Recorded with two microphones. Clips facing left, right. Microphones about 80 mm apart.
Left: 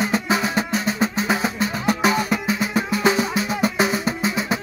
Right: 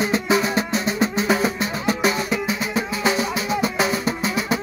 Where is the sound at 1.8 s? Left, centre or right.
Left.